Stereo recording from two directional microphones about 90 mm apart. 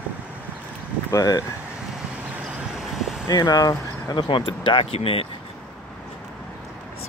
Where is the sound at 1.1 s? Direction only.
40° left (ahead or behind).